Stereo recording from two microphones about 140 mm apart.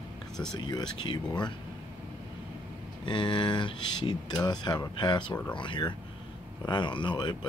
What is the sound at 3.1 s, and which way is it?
Speech, 35° left (ahead or behind).